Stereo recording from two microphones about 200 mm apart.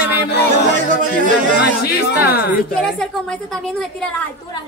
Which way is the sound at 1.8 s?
55° left (ahead or behind).